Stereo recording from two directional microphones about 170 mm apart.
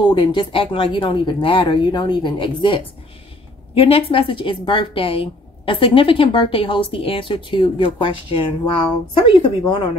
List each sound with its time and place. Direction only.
0.1 s a woman's voice: 25° left (ahead or behind)